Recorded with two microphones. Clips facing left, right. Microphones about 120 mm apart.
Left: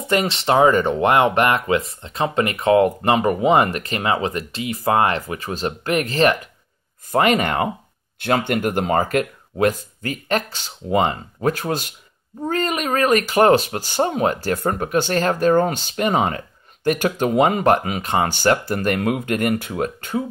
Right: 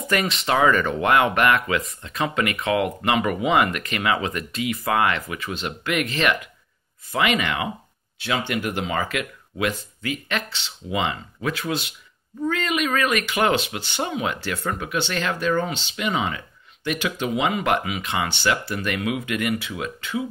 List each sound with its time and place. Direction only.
0.0 s speech: 30° left (ahead or behind); by 20.2 s 45° left (ahead or behind)